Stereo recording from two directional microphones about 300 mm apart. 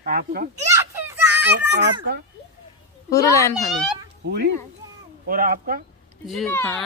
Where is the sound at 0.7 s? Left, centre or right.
Centre.